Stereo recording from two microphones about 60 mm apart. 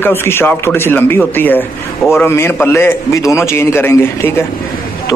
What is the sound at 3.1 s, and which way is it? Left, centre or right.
A man's voice, left.